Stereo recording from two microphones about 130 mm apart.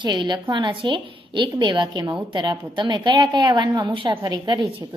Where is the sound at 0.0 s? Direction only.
35° right (ahead or behind).